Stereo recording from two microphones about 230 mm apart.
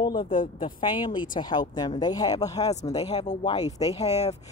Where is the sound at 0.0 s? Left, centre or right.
Centre.